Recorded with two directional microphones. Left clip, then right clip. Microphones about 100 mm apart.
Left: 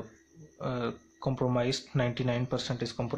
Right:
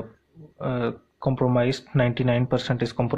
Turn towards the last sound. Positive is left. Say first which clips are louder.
# right 8 dB
turn(degrees=-25)  # may be behind; listen again after turning